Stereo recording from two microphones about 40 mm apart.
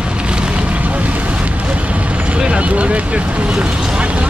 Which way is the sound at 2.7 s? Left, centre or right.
Right.